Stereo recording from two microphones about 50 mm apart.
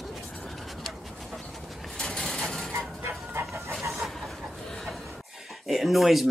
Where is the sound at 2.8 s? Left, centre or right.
Right.